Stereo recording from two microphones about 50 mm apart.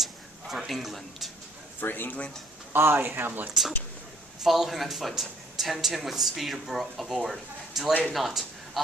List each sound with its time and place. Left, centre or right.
0.0 s a sound: centre
1.8 s speech: left
2.7 s speech: right
4.4 s speech: centre